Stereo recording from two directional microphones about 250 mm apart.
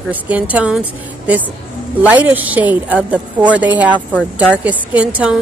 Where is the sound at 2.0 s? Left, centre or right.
Centre.